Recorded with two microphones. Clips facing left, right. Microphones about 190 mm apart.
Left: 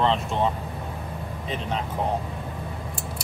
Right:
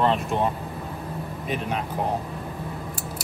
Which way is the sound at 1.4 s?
10° right (ahead or behind).